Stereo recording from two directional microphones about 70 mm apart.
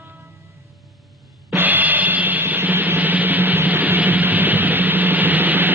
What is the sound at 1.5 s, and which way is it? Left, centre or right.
Drum, right.